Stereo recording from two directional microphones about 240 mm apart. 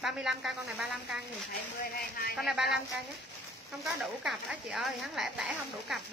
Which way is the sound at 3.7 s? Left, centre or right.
Centre.